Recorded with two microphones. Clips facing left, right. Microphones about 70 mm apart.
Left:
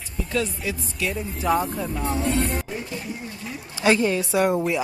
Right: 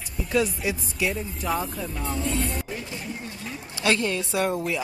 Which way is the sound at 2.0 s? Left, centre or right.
Left.